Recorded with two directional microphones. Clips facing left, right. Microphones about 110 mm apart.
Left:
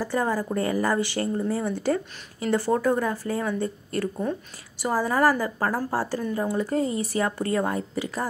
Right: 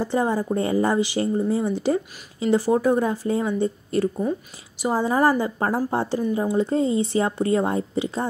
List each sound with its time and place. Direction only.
0.0 s speech: 20° right (ahead or behind)